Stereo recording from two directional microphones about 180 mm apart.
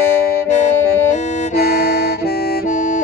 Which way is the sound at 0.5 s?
40° left (ahead or behind).